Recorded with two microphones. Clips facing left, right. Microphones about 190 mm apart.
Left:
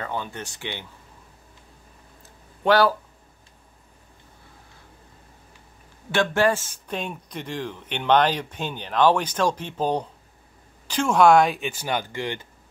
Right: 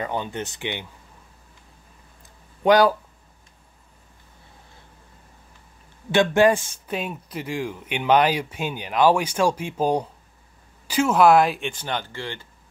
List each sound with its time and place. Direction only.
0.0 s speech: 20° right (ahead or behind)
2.2 s a sound: 15° right (ahead or behind)
6.1 s speech: 15° right (ahead or behind); by 12.4 s 15° left (ahead or behind)